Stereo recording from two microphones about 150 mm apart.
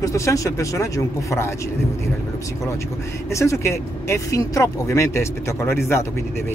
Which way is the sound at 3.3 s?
20° left (ahead or behind).